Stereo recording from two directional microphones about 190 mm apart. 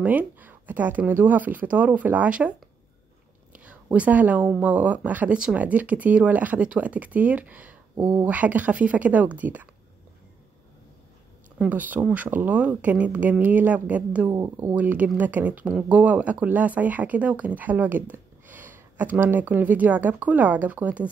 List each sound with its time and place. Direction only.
0.0 s speech: 10° right (ahead or behind)
3.5 s speech: 5° right (ahead or behind)
8.0 s speech: 20° right (ahead or behind)
8.3 s speech: 10° right (ahead or behind)
11.5 s speech: 5° right (ahead or behind)